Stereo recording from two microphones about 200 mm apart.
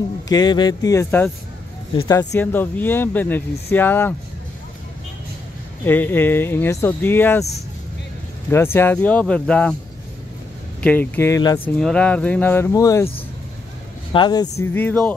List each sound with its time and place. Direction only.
0.3 s speech: 20° left (ahead or behind)
5.9 s speech: 10° left (ahead or behind)
8.5 s speech: 10° left (ahead or behind)
10.8 s speech: 10° left (ahead or behind)
14.1 s speech: 20° left (ahead or behind)